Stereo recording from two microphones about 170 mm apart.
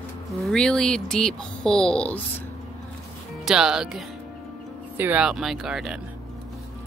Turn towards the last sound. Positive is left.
turn(degrees=0)  # may be behind; listen again after turning